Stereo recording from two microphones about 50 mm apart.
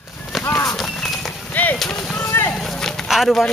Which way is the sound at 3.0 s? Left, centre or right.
Centre.